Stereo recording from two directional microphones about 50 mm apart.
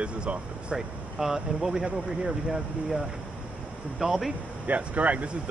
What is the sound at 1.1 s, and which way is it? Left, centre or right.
Speech, centre.